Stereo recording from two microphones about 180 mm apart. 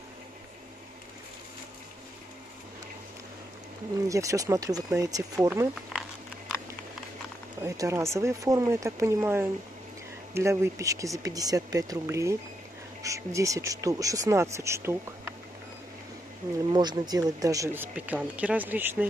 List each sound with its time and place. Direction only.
4.1 s speech: 15° right (ahead or behind)
5.9 s a sound: centre (ahead or behind)
7.6 s speech: 15° right (ahead or behind)
16.7 s speech: 25° right (ahead or behind)
17.9 s speech: 10° right (ahead or behind)